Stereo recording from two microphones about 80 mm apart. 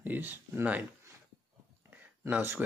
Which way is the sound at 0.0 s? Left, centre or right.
Right.